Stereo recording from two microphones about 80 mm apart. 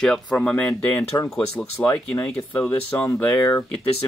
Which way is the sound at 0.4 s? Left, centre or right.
Centre.